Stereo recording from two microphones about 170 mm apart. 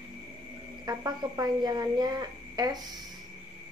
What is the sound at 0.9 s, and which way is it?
A woman's voice, 25° right (ahead or behind).